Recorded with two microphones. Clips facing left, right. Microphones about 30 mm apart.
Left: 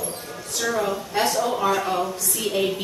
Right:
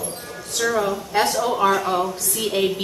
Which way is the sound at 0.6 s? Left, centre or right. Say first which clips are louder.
Right 3 dB; right.